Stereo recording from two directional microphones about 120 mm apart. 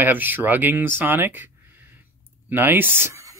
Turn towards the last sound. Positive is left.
turn(degrees=-25)  # may be behind; listen again after turning